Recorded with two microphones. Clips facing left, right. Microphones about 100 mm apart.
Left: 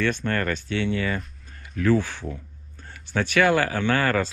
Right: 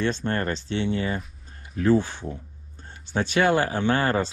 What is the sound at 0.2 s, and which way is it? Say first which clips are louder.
Speech: left 1 dB; 25° right (ahead or behind).